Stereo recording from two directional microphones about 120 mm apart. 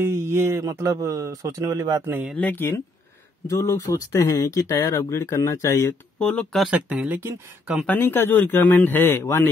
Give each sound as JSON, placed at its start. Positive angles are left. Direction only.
{"t": 0.0, "sound": "speech", "side_deg": -20}
{"t": 2.0, "sound": "speech", "side_deg": -20}
{"t": 2.3, "sound": "speech", "side_deg": 15}
{"t": 6.1, "sound": "speech", "side_deg": 10}
{"t": 6.6, "sound": "speech", "side_deg": -10}
{"t": 7.8, "sound": "speech", "side_deg": 15}